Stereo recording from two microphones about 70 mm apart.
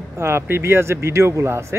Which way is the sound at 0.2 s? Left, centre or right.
Right.